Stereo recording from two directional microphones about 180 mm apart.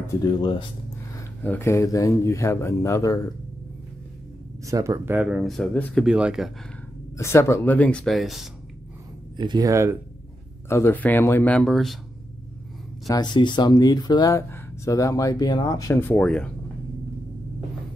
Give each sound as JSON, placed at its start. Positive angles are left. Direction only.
{"t": 0.0, "sound": "speech", "side_deg": 20}
{"t": 1.4, "sound": "speech", "side_deg": 10}
{"t": 4.6, "sound": "speech", "side_deg": -20}
{"t": 6.0, "sound": "speech", "side_deg": -5}
{"t": 7.2, "sound": "speech", "side_deg": 15}
{"t": 9.4, "sound": "speech", "side_deg": -25}
{"t": 10.7, "sound": "speech", "side_deg": 10}
{"t": 13.1, "sound": "speech", "side_deg": 25}